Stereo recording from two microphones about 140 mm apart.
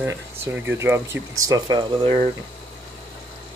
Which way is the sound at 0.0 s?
15° right (ahead or behind).